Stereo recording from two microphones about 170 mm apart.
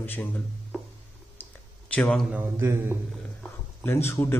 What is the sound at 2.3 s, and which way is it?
Speech, 15° right (ahead or behind).